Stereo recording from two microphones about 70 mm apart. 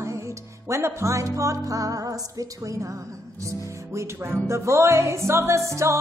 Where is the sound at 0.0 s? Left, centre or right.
Right.